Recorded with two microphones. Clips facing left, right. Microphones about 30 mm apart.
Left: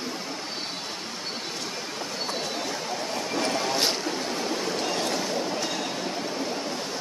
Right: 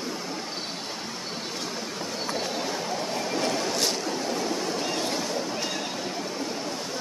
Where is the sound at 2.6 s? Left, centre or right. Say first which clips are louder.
Right 1 dB; centre.